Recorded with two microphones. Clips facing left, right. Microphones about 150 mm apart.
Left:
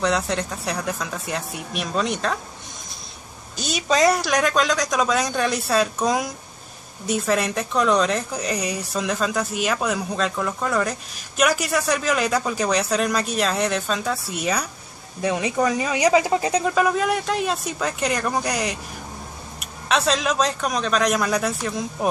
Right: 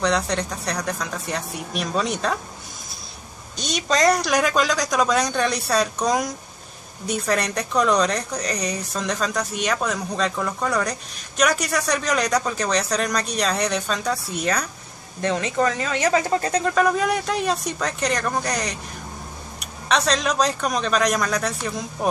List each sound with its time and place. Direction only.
0.0 s speech: 5° left (ahead or behind)
3.5 s speech: 5° left (ahead or behind)